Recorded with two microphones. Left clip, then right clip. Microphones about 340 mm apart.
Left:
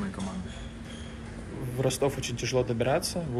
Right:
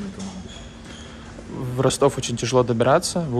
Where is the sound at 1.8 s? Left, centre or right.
Right.